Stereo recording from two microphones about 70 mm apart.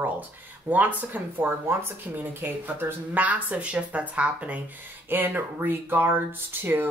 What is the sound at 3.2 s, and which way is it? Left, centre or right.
Speech, right.